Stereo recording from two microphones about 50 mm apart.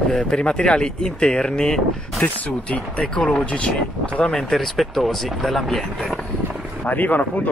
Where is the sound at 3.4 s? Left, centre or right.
Left.